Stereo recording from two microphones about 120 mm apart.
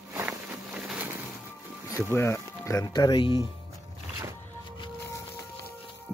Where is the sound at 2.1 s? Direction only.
25° left (ahead or behind); by 3.5 s 40° left (ahead or behind).